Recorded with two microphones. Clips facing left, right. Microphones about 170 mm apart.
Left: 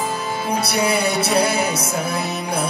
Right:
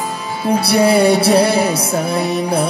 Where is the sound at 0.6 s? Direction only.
30° right (ahead or behind).